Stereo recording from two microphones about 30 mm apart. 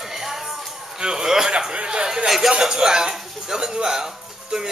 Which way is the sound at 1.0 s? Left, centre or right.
Right.